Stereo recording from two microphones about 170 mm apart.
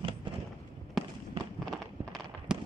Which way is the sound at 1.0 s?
Centre (ahead or behind).